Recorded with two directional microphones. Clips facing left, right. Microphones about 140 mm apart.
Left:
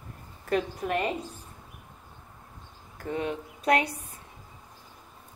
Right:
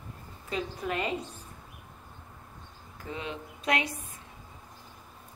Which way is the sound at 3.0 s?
50° left (ahead or behind).